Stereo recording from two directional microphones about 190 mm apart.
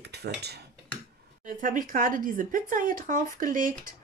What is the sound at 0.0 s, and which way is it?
Cutlery, 60° right (ahead or behind).